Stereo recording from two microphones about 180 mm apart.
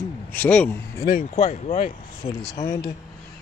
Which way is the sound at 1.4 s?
35° left (ahead or behind).